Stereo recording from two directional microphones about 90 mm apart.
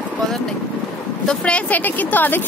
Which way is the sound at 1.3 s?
10° left (ahead or behind).